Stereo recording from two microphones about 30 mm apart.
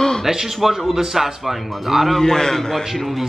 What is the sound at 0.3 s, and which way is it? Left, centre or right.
A man's voice, centre.